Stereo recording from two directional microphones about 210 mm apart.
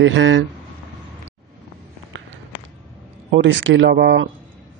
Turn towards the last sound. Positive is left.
turn(degrees=-50)  # may be behind; listen again after turning